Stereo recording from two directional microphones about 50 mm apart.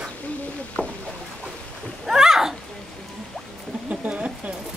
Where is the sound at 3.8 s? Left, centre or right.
Right.